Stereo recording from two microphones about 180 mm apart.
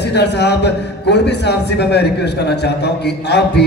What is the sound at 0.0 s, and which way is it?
A man's voice, 70° left (ahead or behind).